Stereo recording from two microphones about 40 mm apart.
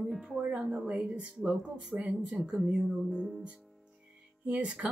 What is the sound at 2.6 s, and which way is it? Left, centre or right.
Speech, centre.